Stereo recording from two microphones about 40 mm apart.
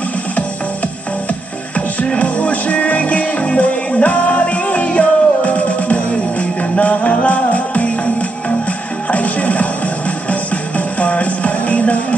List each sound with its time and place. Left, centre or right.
2.0 s music: left
9.1 s music: left
11.0 s music: left